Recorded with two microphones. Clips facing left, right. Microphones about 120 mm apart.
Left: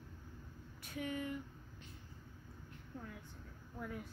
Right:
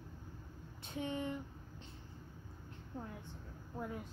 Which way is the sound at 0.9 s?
25° right (ahead or behind).